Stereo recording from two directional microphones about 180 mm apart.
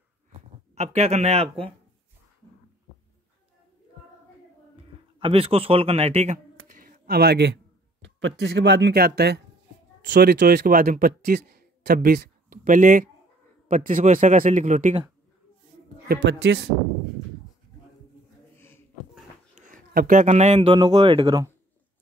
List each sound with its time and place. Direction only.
0.3 s speech: 35° right (ahead or behind)
5.2 s speech: 35° right (ahead or behind); by 7.5 s 65° right (ahead or behind)
8.0 s speech: 85° right; by 15.0 s 45° right (ahead or behind)
16.1 s speech: 70° right (ahead or behind)
19.7 s speech: 50° right (ahead or behind); by 21.5 s 25° right (ahead or behind)